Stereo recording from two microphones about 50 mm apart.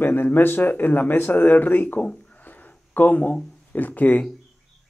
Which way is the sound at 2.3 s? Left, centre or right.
Left.